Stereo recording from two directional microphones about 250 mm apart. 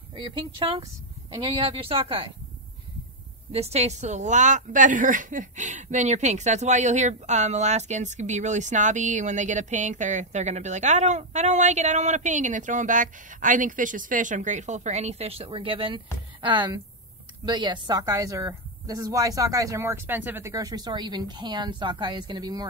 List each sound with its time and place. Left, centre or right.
0.1 s a woman's voice: centre
3.5 s a woman's voice: right